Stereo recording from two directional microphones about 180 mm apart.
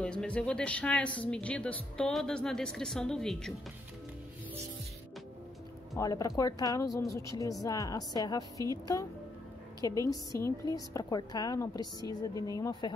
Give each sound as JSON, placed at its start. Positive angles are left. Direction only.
{"t": 0.0, "sound": "speech", "side_deg": 5}
{"t": 5.9, "sound": "a woman's voice", "side_deg": 20}
{"t": 9.8, "sound": "a woman's voice", "side_deg": 20}